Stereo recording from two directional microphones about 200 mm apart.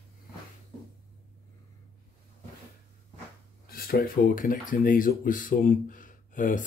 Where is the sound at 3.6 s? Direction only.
50° left (ahead or behind).